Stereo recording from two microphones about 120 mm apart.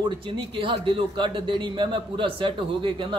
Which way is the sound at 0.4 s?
45° right (ahead or behind).